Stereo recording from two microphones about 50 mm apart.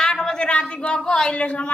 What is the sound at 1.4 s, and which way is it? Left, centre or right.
Speech, left.